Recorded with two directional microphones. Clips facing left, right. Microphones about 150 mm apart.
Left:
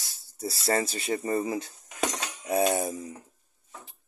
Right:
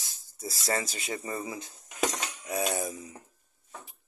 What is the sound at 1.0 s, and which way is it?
Speech, 50° left (ahead or behind).